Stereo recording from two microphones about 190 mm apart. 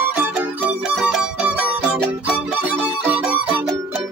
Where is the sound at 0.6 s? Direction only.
5° right (ahead or behind).